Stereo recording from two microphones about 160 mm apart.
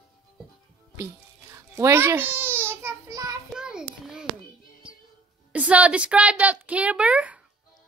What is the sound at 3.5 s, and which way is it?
Child singing, 5° right (ahead or behind).